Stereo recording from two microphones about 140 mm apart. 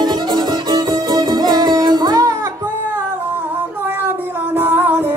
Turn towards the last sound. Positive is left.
turn(degrees=-15)  # may be behind; listen again after turning